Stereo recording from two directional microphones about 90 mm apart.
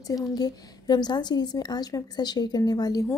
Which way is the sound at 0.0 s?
45° left (ahead or behind).